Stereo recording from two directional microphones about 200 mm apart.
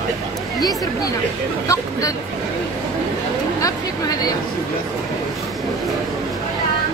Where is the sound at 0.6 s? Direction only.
20° left (ahead or behind).